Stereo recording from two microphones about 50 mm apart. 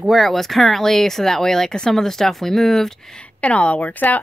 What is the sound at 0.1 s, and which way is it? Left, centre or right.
Speech, centre.